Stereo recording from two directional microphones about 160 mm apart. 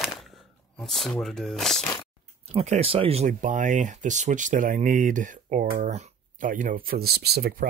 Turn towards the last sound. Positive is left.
turn(degrees=-65)  # may be behind; listen again after turning